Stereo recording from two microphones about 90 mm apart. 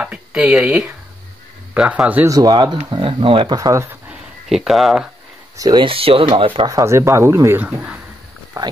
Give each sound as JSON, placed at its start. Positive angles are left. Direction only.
{"t": 0.0, "sound": "speech", "side_deg": -10}
{"t": 2.2, "sound": "speech", "side_deg": -45}
{"t": 2.5, "sound": "speech", "side_deg": -55}
{"t": 3.0, "sound": "speech", "side_deg": -90}
{"t": 3.5, "sound": "speech", "side_deg": -40}
{"t": 4.1, "sound": "a sound", "side_deg": -5}
{"t": 5.8, "sound": "speech", "side_deg": -90}
{"t": 6.7, "sound": "speech", "side_deg": -35}
{"t": 8.6, "sound": "speech", "side_deg": -40}